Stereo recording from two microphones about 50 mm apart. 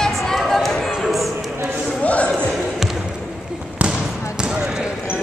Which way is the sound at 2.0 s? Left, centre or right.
Left.